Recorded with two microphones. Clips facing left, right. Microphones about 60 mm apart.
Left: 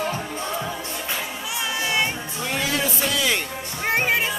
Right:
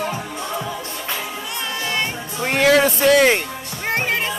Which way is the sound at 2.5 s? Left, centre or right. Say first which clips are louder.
Right 11 dB; right.